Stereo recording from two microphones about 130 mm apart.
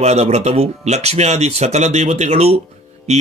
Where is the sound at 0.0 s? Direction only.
55° right (ahead or behind).